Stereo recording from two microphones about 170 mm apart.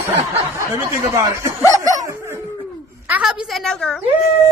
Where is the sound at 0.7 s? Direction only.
15° right (ahead or behind).